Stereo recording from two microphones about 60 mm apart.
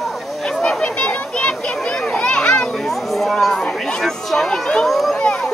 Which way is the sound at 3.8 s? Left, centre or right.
Centre.